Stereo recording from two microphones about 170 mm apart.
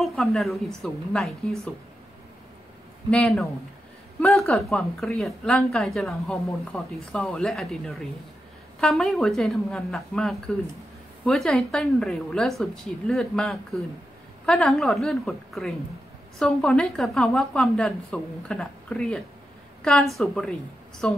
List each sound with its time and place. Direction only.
0.0 s a woman's voice: centre (ahead or behind)
3.1 s a woman's voice: 5° left (ahead or behind)